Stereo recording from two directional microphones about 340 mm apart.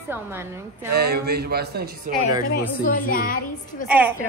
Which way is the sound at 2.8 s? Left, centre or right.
Left.